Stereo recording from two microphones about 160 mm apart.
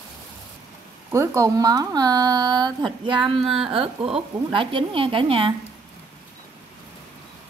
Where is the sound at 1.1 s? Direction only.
20° right (ahead or behind); by 5.5 s 35° right (ahead or behind).